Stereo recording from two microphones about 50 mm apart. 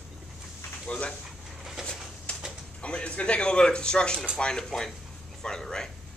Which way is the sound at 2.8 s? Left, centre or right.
Left.